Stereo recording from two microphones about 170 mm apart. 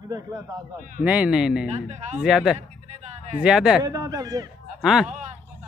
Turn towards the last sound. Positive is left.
turn(degrees=-45)  # may be behind; listen again after turning